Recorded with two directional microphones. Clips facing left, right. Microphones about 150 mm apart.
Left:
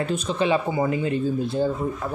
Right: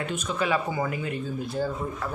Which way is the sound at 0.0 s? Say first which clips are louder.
Left 5 dB; 35° left (ahead or behind).